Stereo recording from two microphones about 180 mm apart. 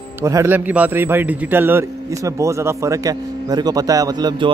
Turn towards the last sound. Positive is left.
turn(degrees=-25)  # may be behind; listen again after turning